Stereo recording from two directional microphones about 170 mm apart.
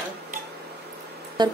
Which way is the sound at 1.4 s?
25° right (ahead or behind).